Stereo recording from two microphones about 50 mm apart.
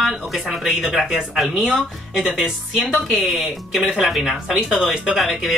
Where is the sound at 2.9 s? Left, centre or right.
Centre.